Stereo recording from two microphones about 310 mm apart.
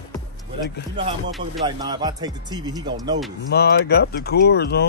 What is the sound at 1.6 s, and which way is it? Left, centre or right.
Speech, centre.